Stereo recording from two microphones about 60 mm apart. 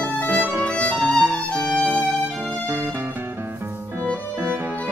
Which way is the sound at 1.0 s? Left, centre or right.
Right.